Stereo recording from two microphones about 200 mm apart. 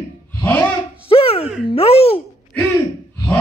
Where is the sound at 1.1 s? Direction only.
30° left (ahead or behind).